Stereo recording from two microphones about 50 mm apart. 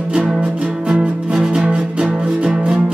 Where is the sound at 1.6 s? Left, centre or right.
Right.